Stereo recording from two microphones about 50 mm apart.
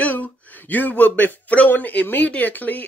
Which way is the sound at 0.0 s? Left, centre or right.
Left.